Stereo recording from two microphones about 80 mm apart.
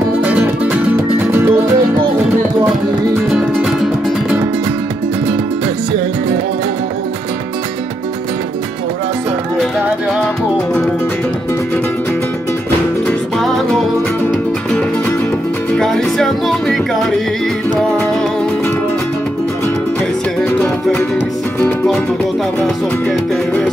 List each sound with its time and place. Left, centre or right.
1.2 s music: right
3.3 s music: centre
15.8 s music: centre